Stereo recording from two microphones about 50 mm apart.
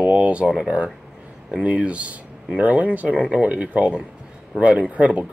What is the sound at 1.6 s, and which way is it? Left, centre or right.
Speech, right.